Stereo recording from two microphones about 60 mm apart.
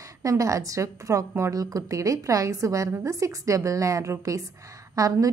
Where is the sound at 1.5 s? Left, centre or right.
Right.